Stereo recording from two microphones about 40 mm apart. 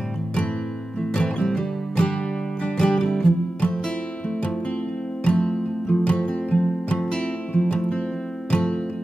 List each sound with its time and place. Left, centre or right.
1.1 s music: left
5.2 s music: left